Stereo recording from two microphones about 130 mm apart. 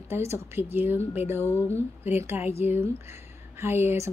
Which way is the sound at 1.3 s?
15° left (ahead or behind).